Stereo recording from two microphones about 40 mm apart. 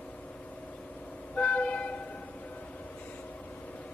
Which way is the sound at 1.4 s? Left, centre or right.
Left.